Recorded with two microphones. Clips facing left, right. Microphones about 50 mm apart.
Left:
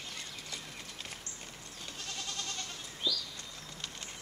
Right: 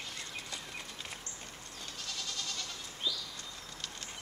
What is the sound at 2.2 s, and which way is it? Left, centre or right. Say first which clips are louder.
Goat: even; left.